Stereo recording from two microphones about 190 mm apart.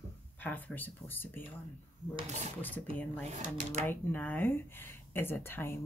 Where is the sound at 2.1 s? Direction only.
35° right (ahead or behind).